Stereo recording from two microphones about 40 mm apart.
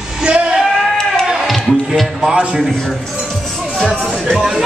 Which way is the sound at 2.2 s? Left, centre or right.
Centre.